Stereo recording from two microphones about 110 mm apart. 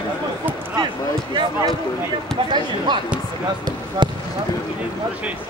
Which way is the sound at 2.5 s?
45° right (ahead or behind).